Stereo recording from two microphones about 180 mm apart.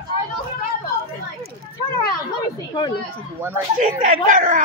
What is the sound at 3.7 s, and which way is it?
Speech, 45° right (ahead or behind).